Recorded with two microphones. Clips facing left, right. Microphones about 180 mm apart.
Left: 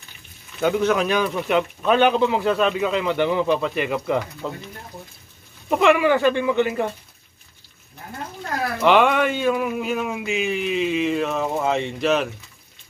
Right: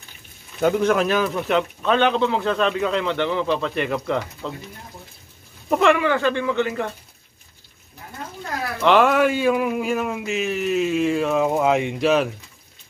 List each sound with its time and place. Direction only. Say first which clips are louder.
0.6 s a man's voice: right 1 dB; 5° right (ahead or behind)
5.7 s a man's voice: even; centre (ahead or behind)
6.0 s speech: left 3 dB; 15° left (ahead or behind)
8.8 s a man's voice: right 1 dB; centre (ahead or behind)